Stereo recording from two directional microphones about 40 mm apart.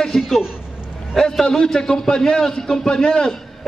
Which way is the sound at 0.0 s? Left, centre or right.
Centre.